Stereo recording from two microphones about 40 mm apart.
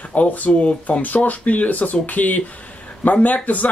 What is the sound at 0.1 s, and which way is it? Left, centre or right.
Speech, left.